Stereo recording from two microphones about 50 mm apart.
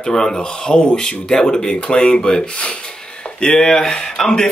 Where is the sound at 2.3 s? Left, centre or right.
Left.